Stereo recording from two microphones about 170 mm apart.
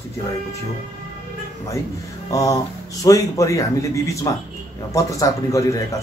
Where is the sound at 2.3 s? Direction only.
20° left (ahead or behind).